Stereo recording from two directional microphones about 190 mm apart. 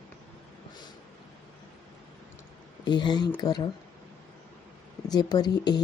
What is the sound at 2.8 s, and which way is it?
Speech, 25° left (ahead or behind).